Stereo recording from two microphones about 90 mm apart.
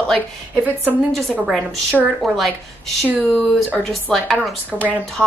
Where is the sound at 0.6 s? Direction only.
15° right (ahead or behind).